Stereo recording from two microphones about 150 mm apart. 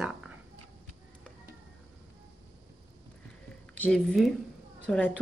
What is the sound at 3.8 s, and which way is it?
A child's voice, 5° left (ahead or behind).